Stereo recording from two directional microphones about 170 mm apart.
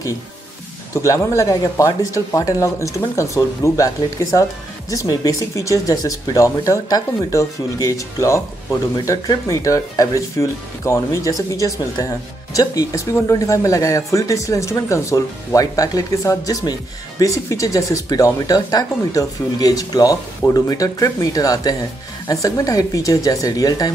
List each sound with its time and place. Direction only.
0.9 s speech: 20° left (ahead or behind)